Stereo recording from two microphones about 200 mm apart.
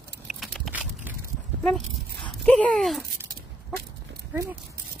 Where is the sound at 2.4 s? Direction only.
5° left (ahead or behind).